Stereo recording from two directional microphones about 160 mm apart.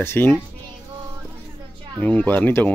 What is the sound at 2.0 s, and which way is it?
Speech, 10° left (ahead or behind).